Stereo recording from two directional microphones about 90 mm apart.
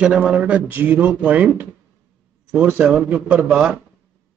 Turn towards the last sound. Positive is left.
turn(degrees=-10)  # may be behind; listen again after turning